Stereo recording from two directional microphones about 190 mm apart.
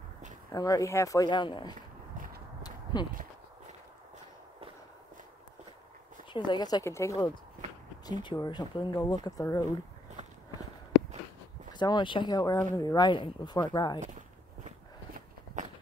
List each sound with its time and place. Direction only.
0.5 s speech: 20° left (ahead or behind)
2.6 s a sound: 20° left (ahead or behind)
6.3 s speech: 25° left (ahead or behind)
11.8 s speech: 25° left (ahead or behind)